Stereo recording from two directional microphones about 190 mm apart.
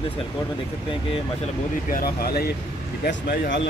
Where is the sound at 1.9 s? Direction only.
50° left (ahead or behind); by 3.6 s 70° left (ahead or behind).